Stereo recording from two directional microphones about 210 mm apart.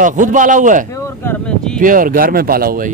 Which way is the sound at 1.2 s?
5° left (ahead or behind).